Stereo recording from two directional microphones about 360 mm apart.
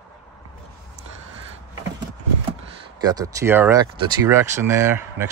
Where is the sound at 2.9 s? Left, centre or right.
Centre.